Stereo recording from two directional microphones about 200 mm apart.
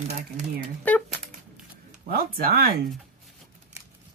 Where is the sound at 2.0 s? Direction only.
50° right (ahead or behind).